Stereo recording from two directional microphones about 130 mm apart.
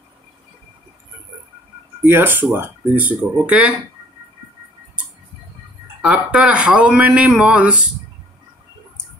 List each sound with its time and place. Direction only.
2.0 s speech: 15° right (ahead or behind)
6.0 s speech: 10° right (ahead or behind)